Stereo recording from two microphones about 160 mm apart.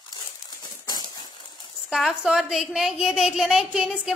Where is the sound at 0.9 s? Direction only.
25° left (ahead or behind).